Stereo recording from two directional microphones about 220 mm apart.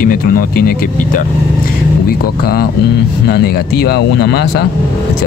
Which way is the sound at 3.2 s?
45° left (ahead or behind).